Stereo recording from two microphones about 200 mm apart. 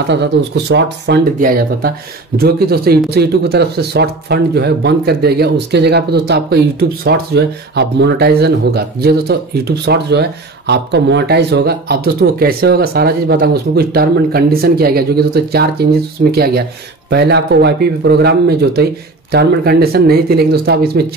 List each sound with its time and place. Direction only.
0.1 s speech: 60° right (ahead or behind)
1.4 s speech: 45° right (ahead or behind)